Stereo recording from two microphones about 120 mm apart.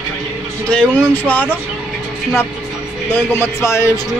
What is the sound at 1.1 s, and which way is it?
Speech, 15° left (ahead or behind).